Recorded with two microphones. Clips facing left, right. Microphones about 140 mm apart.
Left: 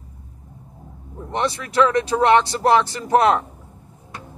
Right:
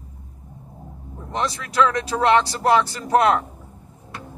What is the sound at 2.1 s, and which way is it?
Speech, 25° left (ahead or behind).